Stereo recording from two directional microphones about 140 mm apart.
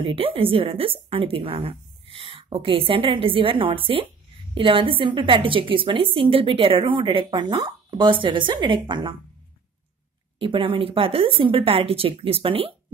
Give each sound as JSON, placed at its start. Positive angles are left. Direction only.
{"t": 0.0, "sound": "a woman's voice", "side_deg": -40}
{"t": 10.4, "sound": "a woman's voice", "side_deg": -40}